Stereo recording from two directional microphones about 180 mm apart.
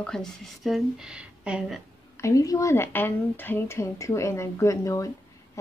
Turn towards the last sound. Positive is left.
turn(degrees=15)  # may be behind; listen again after turning